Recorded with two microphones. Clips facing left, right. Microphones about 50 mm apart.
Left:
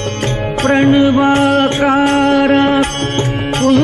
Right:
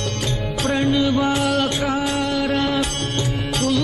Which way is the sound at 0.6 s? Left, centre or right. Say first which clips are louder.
Left 9 dB; left.